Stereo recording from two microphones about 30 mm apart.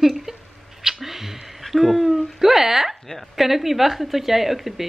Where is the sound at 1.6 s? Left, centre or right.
Centre.